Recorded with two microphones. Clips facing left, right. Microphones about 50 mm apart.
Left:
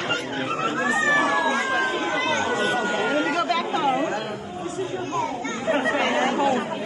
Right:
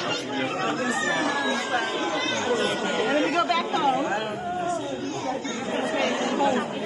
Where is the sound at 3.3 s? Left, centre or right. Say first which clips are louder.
Even; centre.